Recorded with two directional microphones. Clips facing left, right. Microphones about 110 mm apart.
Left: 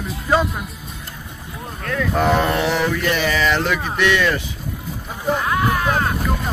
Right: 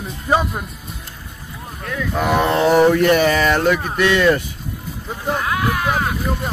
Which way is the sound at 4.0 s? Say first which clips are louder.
Left 1 dB; 35° right (ahead or behind).